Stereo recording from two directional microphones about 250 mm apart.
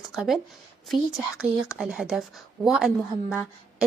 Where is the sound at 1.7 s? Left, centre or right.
Centre.